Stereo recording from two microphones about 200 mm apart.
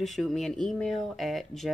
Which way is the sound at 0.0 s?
Centre (ahead or behind).